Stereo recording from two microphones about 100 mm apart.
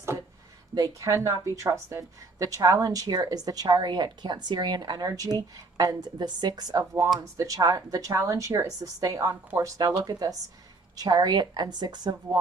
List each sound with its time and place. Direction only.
0.7 s a woman's voice: 35° right (ahead or behind)